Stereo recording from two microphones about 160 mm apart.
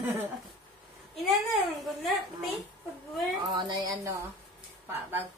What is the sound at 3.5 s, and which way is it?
Speech, 25° right (ahead or behind).